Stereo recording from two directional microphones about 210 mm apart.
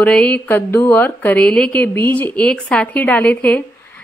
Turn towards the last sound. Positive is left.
turn(degrees=5)  # may be behind; listen again after turning